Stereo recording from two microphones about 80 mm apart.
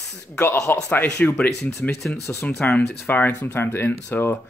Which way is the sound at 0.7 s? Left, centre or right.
Left.